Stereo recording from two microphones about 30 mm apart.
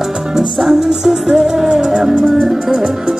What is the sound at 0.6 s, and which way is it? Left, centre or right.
Music, centre.